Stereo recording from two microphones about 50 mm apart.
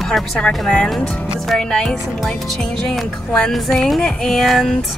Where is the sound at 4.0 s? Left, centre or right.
Centre.